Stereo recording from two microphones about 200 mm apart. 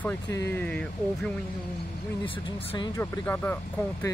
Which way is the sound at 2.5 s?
25° left (ahead or behind).